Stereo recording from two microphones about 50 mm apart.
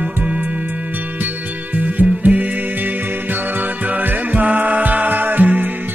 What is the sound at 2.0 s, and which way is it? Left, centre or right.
Music, right.